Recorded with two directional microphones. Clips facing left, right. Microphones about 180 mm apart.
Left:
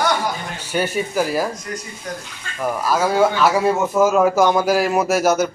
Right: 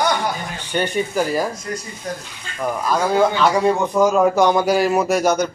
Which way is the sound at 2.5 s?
5° left (ahead or behind).